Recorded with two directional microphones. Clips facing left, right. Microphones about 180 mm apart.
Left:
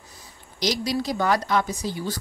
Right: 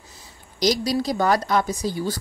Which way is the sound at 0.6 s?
40° right (ahead or behind).